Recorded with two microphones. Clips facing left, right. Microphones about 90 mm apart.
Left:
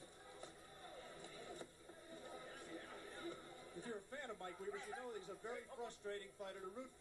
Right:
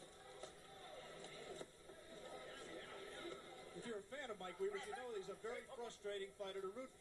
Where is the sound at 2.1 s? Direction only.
20° left (ahead or behind).